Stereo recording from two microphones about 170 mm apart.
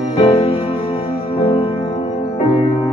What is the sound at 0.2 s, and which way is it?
Music, 35° left (ahead or behind).